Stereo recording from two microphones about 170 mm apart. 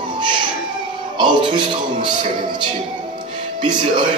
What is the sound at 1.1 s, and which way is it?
Speech, 25° right (ahead or behind).